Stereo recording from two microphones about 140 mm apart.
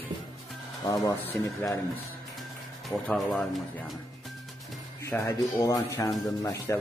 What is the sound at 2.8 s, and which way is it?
Speech, centre (ahead or behind).